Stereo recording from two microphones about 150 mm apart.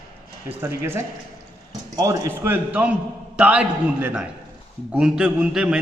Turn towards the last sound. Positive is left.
turn(degrees=-5)  # may be behind; listen again after turning